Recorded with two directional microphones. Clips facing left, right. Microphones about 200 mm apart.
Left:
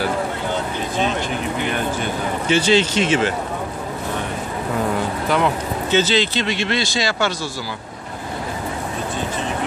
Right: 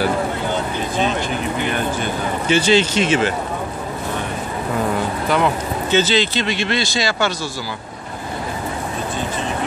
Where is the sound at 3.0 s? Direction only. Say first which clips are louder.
Right 1 dB; 5° right (ahead or behind).